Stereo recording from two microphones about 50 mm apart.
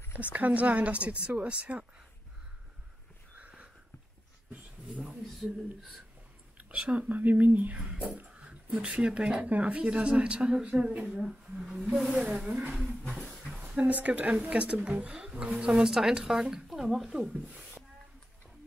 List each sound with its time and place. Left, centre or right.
0.2 s speech: right
3.3 s a sound: right
6.7 s speech: right
11.1 s a woman's voice: centre
12.2 s a woman's voice: right
13.7 s speech: right
14.4 s a woman's voice: right